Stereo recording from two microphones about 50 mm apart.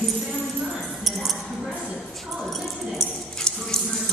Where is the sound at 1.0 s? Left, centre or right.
Centre.